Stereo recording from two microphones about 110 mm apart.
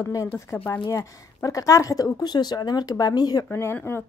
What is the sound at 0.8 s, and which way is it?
Speech, 30° left (ahead or behind).